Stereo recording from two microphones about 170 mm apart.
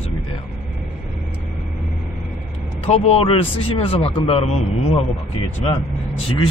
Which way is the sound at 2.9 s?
35° left (ahead or behind).